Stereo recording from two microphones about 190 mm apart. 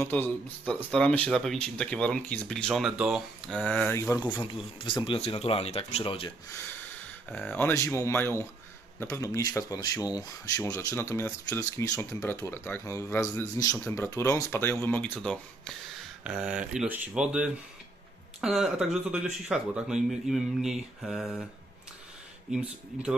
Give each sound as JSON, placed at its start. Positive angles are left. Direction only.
{"t": 0.0, "sound": "speech", "side_deg": 10}
{"t": 7.2, "sound": "speech", "side_deg": 5}
{"t": 16.3, "sound": "speech", "side_deg": -5}
{"t": 22.5, "sound": "speech", "side_deg": -5}